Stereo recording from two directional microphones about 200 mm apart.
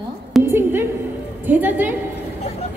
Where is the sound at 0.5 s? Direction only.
10° right (ahead or behind).